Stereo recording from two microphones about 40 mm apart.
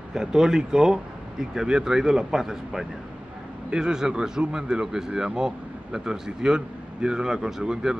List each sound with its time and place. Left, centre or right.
0.1 s speech: centre